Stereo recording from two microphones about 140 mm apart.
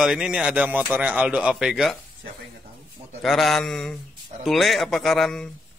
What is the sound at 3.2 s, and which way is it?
A man's voice, centre (ahead or behind).